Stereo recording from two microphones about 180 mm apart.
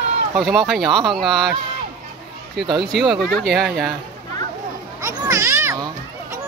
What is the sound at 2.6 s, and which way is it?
Speech, 65° right (ahead or behind).